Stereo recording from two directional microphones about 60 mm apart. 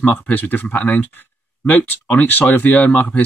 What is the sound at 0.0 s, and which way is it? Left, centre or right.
Speech, left.